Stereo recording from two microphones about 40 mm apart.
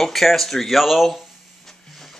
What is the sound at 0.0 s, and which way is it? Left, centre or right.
Speech, centre.